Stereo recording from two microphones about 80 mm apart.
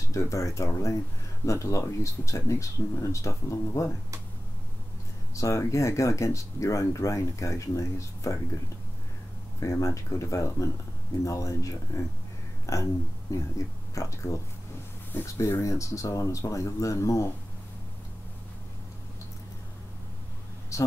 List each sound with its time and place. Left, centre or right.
0.1 s speech: left
5.3 s speech: left
9.6 s speech: left
20.7 s a sound: left